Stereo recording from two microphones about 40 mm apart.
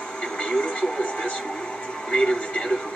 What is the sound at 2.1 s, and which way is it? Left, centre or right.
Television, left.